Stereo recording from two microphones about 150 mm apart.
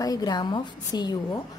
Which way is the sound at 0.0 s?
25° left (ahead or behind).